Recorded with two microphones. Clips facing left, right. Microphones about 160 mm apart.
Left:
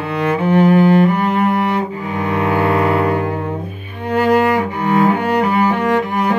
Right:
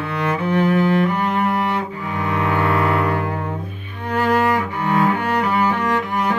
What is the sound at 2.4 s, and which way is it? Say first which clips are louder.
Music: left 4 dB; 20° left (ahead or behind).